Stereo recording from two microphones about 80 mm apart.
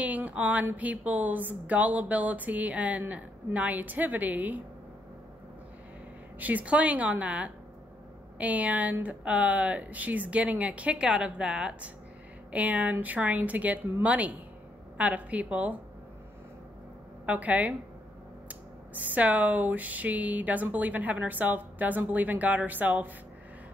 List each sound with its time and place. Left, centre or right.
0.0 s a sound: centre
0.7 s speech: centre
6.4 s speech: centre
17.3 s speech: centre
19.0 s speech: centre